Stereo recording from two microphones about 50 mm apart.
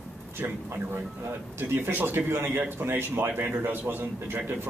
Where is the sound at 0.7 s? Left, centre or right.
Right.